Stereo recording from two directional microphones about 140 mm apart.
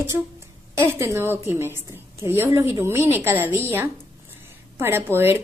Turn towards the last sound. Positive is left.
turn(degrees=-15)  # may be behind; listen again after turning